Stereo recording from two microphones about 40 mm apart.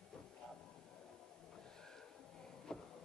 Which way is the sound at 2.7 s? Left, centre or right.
Centre.